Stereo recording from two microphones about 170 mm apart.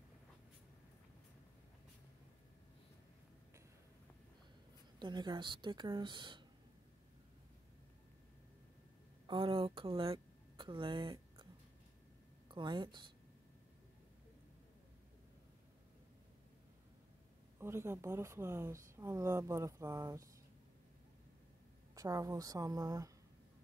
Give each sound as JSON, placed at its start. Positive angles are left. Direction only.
{"t": 4.9, "sound": "speech", "side_deg": -25}
{"t": 9.3, "sound": "speech", "side_deg": -30}
{"t": 12.4, "sound": "a woman's voice", "side_deg": -25}
{"t": 17.6, "sound": "speech", "side_deg": -15}
{"t": 21.9, "sound": "speech", "side_deg": -20}